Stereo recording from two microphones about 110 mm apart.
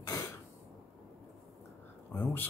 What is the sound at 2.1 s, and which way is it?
Speech, 15° left (ahead or behind).